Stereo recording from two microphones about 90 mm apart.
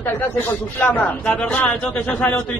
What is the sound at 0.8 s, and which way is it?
Speech, 20° left (ahead or behind).